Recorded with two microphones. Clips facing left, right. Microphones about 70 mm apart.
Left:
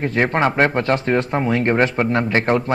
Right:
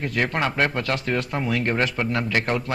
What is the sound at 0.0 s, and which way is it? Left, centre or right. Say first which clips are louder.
Speech: left 6 dB; left.